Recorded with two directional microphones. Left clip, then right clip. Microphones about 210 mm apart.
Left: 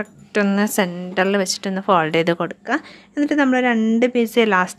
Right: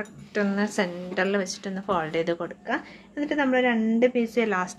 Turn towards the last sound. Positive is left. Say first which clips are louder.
# left 9 dB
turn(degrees=45)  # may be behind; listen again after turning